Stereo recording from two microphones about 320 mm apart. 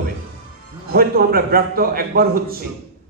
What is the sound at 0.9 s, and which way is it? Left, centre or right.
A man's voice, right.